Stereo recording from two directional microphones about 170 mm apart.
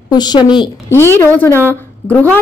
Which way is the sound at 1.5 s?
15° right (ahead or behind).